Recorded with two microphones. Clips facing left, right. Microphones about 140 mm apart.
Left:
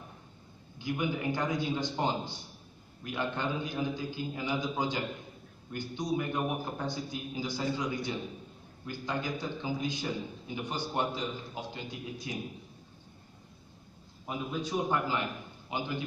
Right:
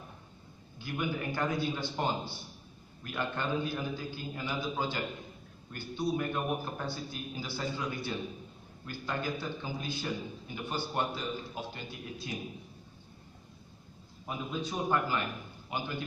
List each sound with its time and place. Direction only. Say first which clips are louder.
0.7 s a man's voice: left 2 dB; 20° left (ahead or behind)
14.2 s a man's voice: left 1 dB; 20° left (ahead or behind)